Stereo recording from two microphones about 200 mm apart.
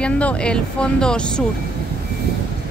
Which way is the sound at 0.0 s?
5° left (ahead or behind).